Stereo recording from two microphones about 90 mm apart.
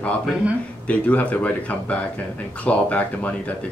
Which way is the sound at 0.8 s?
15° left (ahead or behind).